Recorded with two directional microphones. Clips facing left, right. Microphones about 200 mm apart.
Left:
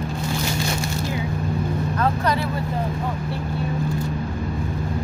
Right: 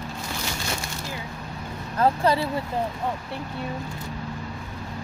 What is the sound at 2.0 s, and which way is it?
Speech, 30° right (ahead or behind).